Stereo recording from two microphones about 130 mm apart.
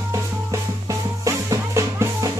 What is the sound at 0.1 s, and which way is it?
Music, 25° right (ahead or behind).